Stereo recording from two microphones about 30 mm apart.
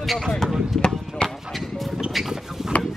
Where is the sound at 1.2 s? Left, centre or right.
Left.